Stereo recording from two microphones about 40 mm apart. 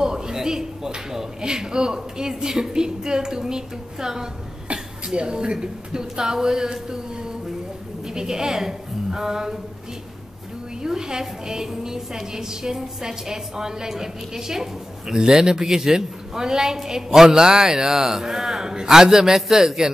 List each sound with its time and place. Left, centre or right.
0.0 s a woman's voice: centre
8.1 s a woman's voice: centre
10.8 s a woman's voice: centre